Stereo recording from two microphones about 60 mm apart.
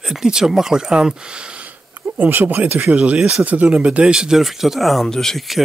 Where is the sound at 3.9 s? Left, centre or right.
Centre.